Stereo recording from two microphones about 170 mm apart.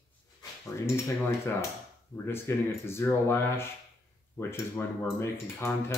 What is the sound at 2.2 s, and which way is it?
Speech, 15° left (ahead or behind).